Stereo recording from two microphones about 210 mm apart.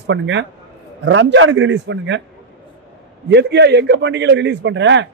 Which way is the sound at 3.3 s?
55° right (ahead or behind).